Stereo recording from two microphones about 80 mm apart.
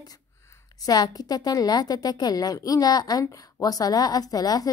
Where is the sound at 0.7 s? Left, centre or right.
Left.